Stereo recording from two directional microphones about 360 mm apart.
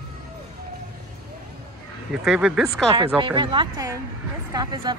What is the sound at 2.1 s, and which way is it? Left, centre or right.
Speech, centre.